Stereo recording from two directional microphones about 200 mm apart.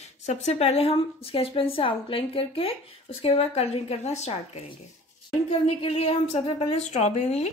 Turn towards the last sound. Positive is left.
turn(degrees=35)  # may be behind; listen again after turning